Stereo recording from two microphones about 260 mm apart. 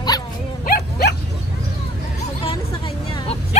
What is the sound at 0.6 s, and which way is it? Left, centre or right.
Livestock, left.